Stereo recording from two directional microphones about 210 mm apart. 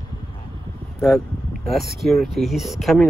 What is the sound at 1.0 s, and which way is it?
Speech, centre (ahead or behind).